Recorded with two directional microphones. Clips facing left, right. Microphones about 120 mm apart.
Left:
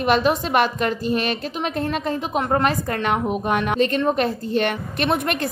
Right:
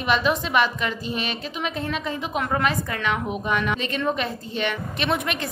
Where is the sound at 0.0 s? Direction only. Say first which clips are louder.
Left 4 dB; 45° left (ahead or behind).